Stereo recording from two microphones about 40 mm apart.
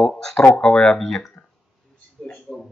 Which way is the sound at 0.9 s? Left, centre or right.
Centre.